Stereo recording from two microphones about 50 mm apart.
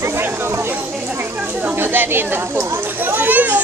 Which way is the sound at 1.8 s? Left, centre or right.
Right.